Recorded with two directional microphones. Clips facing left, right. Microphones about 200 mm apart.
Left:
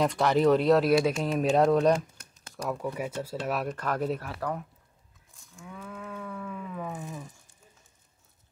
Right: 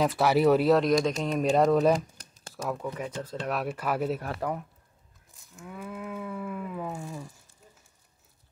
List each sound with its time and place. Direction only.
0.0 s speech: 5° right (ahead or behind)
5.3 s livestock: 5° right (ahead or behind)
7.0 s a sound: 20° left (ahead or behind)